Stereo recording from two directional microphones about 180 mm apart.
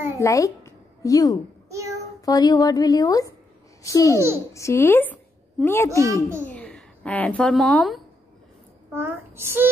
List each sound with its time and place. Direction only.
0.2 s a woman's voice: 15° left (ahead or behind)
1.7 s child singing: 15° right (ahead or behind)
2.2 s a woman's voice: 20° left (ahead or behind)
4.1 s a child's voice: 15° right (ahead or behind)
4.6 s a woman's voice: 15° left (ahead or behind)
5.9 s a child's voice: 15° right (ahead or behind)
6.4 s a woman's voice: 5° left (ahead or behind)
8.9 s a child's voice: 15° right (ahead or behind)